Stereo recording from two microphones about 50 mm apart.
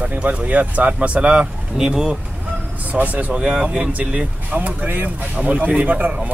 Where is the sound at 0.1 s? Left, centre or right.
Right.